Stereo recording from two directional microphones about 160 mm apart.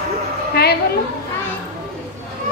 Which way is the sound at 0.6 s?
85° left.